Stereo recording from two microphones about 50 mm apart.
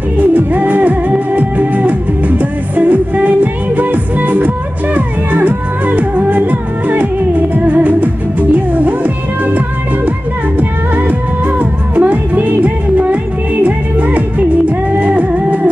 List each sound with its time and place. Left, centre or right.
0.2 s music: right
11.0 s music: right